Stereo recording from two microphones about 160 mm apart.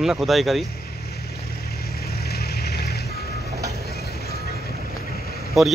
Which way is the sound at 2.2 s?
75° left (ahead or behind).